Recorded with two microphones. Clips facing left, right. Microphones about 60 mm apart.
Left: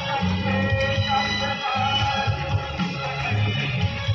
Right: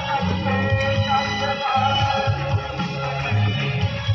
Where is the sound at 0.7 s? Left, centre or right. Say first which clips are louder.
Right 2 dB; centre.